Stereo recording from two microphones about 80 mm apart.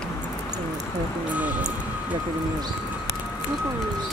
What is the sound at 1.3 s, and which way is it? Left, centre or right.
Speech, centre.